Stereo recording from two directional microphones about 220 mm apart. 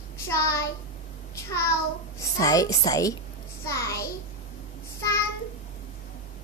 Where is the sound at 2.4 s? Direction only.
15° left (ahead or behind).